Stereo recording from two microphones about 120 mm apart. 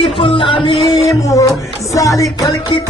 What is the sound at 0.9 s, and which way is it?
Music, 30° left (ahead or behind).